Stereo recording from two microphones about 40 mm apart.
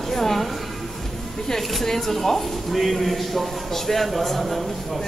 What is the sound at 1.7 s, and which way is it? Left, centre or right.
A man's voice, centre.